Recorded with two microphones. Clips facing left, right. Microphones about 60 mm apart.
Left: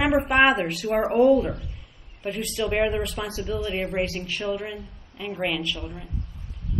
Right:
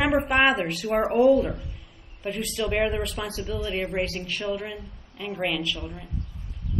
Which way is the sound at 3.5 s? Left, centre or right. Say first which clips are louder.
Left 2 dB; left.